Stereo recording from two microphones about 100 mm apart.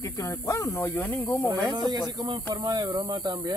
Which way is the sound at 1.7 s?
45° right (ahead or behind).